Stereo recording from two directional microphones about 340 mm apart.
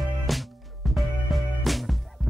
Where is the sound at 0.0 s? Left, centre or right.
Centre.